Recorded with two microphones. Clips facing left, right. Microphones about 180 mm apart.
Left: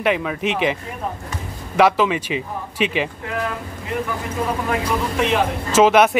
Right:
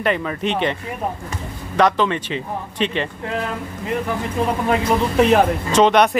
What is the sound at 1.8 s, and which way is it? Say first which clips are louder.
Speech: left 1 dB; 5° left (ahead or behind).